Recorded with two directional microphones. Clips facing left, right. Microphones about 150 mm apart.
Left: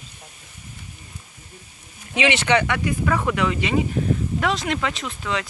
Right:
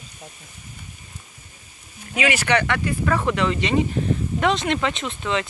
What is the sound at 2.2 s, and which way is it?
Speech, 25° left (ahead or behind).